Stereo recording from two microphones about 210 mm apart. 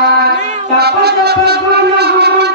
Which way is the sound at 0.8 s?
50° right (ahead or behind).